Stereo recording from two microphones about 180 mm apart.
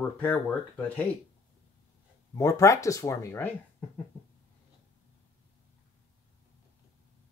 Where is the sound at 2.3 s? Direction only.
20° left (ahead or behind).